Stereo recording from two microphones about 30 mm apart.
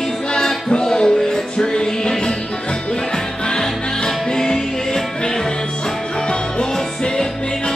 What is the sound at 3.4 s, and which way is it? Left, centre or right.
Music, left.